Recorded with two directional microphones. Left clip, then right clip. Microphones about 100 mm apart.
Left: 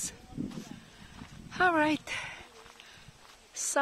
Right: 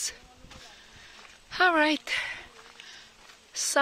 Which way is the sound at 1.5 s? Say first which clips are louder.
Right 4 dB; 5° right (ahead or behind).